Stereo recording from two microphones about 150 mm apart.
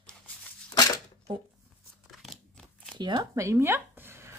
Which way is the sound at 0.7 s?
25° left (ahead or behind).